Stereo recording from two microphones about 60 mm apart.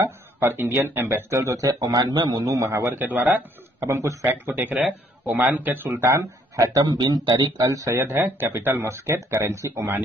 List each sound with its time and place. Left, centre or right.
0.4 s speech: right
1.4 s a man's voice: right
2.8 s speech: right
3.8 s speech: right
4.3 s speech: right
5.9 s speech: right
8.1 s speech: right
9.8 s speech: right